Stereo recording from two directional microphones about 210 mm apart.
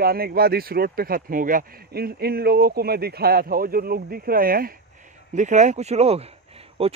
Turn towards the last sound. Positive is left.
turn(degrees=-30)  # may be behind; listen again after turning